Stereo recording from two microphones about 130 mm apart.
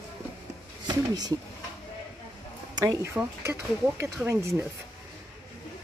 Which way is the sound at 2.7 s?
25° right (ahead or behind).